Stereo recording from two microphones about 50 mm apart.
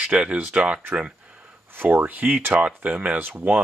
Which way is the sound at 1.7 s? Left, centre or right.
Right.